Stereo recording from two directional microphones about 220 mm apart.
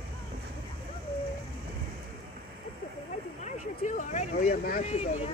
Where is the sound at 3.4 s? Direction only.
35° left (ahead or behind).